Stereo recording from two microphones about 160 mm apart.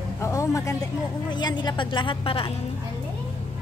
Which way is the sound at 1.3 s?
25° left (ahead or behind).